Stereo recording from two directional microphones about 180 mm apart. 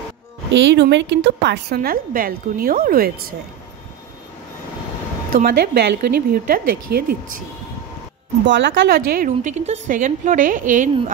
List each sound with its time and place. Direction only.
0.6 s a woman's voice: 85° right; by 3.3 s 55° right (ahead or behind)
5.3 s a woman's voice: 55° right (ahead or behind)
8.5 s speech: 85° right
9.1 s a woman's voice: 45° right (ahead or behind)